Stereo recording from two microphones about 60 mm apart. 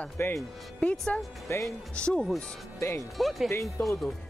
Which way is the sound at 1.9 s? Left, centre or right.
Centre.